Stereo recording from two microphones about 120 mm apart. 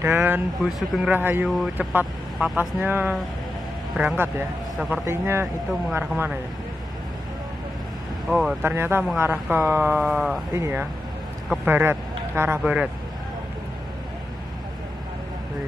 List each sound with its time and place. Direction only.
0.0 s speech: 15° right (ahead or behind)
0.6 s speech: centre (ahead or behind)
1.1 s speech: 15° right (ahead or behind)
8.3 s speech: 5° right (ahead or behind)
8.6 s speech: 20° right (ahead or behind); by 10.4 s 5° right (ahead or behind)
10.5 s speech: 20° right (ahead or behind)